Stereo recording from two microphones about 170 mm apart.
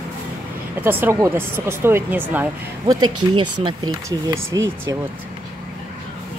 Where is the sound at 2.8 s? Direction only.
25° right (ahead or behind).